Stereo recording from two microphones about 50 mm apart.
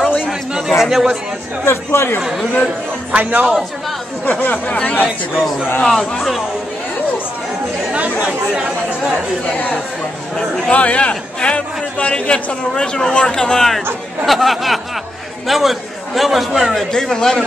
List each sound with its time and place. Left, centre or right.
0.6 s a sound: centre
1.7 s speech: left
3.1 s speech: right
4.3 s speech: left
4.6 s a man's voice: left
5.0 s speech: centre
5.9 s speech: centre
7.9 s chatter: right
9.5 s a man's voice: left
14.2 s a man's voice: centre
16.9 s speech: centre